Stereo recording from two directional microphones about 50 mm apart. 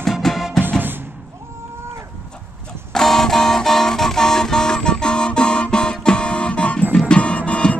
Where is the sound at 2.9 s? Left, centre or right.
Centre; by 7.7 s left.